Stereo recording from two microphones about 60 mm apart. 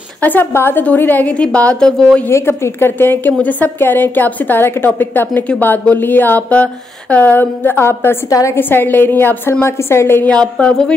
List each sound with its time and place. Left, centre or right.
0.2 s a woman's voice: left
2.2 s a woman's voice: left
3.4 s a woman's voice: left
8.3 s a woman's voice: left
8.5 s a woman's voice: left
10.2 s a woman's voice: centre